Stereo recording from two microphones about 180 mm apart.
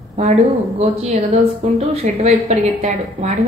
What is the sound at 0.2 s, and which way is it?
A woman's voice, 35° right (ahead or behind).